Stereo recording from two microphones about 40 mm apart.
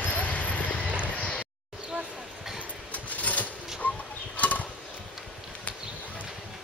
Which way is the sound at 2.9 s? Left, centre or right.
Left.